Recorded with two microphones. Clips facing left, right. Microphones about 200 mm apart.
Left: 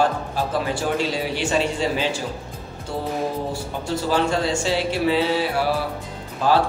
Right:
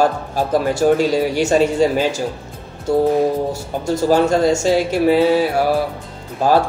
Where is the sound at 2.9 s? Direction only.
40° right (ahead or behind).